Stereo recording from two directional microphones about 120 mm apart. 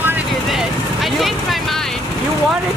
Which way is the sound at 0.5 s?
Centre (ahead or behind).